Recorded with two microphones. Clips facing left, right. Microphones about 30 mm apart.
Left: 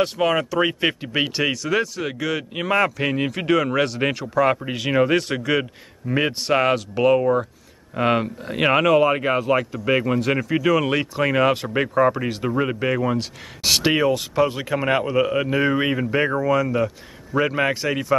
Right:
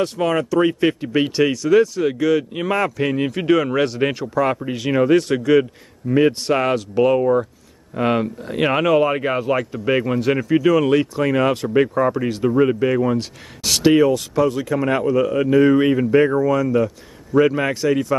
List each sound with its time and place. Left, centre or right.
0.0 s speech: centre